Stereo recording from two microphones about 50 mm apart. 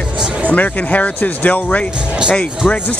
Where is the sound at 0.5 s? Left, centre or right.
Left.